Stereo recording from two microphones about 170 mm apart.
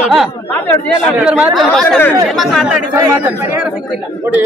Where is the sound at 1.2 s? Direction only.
5° right (ahead or behind).